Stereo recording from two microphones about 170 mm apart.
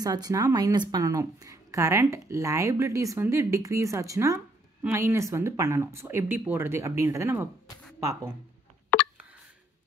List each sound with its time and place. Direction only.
0.0 s a woman's voice: 20° right (ahead or behind)